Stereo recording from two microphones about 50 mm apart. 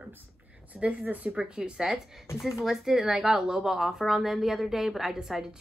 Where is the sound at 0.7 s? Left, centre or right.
Right.